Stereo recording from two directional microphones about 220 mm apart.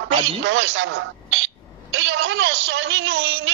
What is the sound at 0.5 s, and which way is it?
Speech, 55° right (ahead or behind).